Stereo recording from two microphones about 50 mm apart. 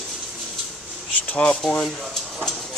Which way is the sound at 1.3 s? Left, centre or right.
Left.